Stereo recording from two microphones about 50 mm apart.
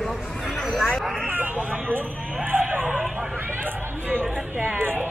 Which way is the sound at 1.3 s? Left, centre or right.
Right.